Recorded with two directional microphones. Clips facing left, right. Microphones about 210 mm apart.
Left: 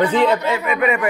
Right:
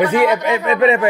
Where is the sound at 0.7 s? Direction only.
25° right (ahead or behind).